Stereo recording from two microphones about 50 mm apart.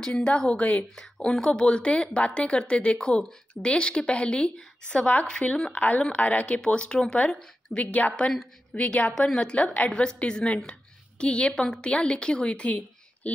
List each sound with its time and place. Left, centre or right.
0.0 s a woman's voice: centre
0.9 s a woman's voice: centre
5.8 s a woman's voice: left
6.6 s a woman's voice: centre